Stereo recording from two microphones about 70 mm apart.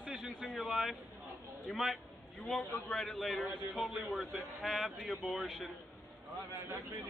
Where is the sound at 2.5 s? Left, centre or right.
Centre.